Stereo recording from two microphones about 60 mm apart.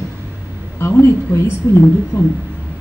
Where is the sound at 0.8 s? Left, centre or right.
Left.